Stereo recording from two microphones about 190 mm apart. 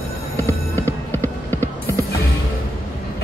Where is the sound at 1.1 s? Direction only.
10° left (ahead or behind).